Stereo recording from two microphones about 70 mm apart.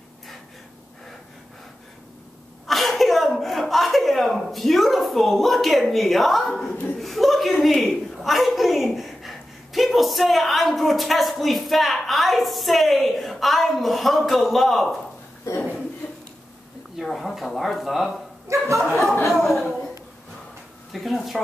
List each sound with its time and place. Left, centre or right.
2.6 s a woman's voice: centre
17.0 s speech: centre
18.5 s speech: right
19.2 s speech: centre
20.9 s speech: centre